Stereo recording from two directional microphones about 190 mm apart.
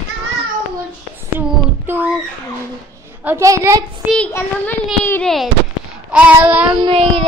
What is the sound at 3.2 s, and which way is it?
Child singing, 15° right (ahead or behind).